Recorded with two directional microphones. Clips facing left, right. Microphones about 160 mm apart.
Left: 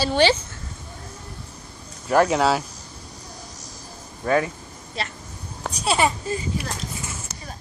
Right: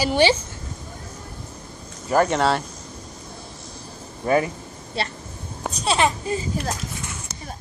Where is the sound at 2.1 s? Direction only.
Centre (ahead or behind).